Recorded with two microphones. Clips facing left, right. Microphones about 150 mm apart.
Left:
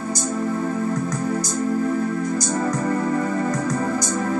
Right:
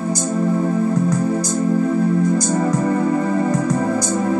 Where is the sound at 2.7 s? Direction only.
15° right (ahead or behind).